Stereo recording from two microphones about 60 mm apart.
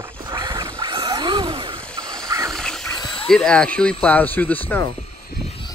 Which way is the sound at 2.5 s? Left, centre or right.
Centre.